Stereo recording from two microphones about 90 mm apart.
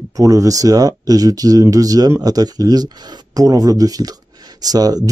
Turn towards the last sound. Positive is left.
turn(degrees=-45)  # may be behind; listen again after turning